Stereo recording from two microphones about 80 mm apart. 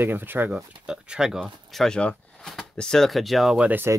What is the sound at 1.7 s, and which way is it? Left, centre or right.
Speech, centre.